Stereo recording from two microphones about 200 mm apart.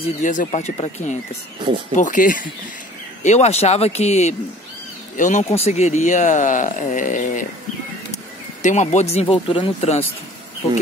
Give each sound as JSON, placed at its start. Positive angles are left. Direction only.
{"t": 0.0, "sound": "speech", "side_deg": 40}
{"t": 8.6, "sound": "speech", "side_deg": 35}